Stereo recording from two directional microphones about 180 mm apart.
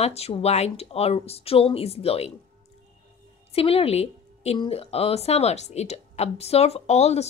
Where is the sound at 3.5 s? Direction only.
35° left (ahead or behind).